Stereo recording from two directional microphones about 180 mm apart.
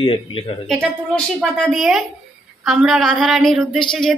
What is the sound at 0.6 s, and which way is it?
A woman's voice, centre (ahead or behind).